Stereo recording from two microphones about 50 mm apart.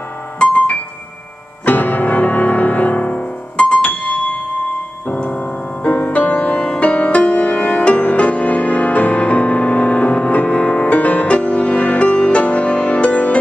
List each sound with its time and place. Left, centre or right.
0.4 s music: left
1.7 s music: left